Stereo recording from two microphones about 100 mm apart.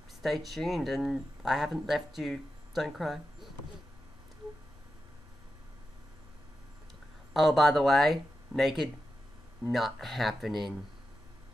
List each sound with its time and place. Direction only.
0.2 s speech: centre (ahead or behind)
7.3 s speech: centre (ahead or behind)